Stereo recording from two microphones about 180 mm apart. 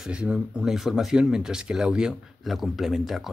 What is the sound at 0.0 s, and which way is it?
Speech, 5° right (ahead or behind).